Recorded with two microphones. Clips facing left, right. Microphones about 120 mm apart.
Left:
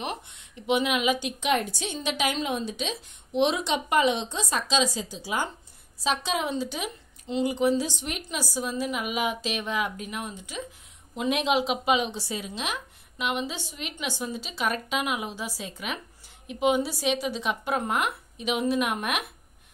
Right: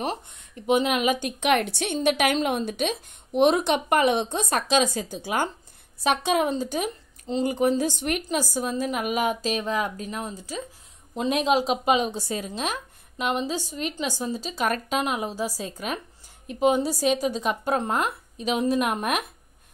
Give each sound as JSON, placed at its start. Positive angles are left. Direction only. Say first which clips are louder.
{"t": 0.0, "sound": "a woman's voice", "louder": "right 4 dB", "side_deg": -40}